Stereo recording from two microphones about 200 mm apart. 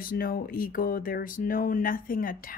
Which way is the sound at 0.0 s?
45° left (ahead or behind).